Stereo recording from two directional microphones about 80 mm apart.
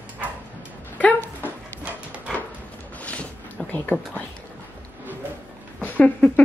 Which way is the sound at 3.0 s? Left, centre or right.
Centre.